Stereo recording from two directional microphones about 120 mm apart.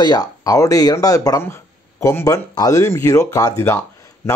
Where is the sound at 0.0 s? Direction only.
35° left (ahead or behind).